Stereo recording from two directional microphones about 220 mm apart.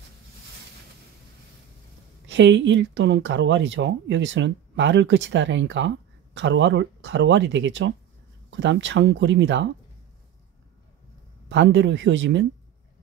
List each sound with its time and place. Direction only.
2.2 s speech: 55° right (ahead or behind)
11.4 s speech: 55° right (ahead or behind)